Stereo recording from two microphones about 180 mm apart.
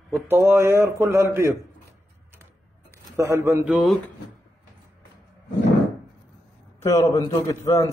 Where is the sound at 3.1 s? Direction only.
15° right (ahead or behind).